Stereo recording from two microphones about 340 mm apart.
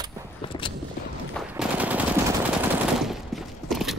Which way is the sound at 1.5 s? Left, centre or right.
Centre.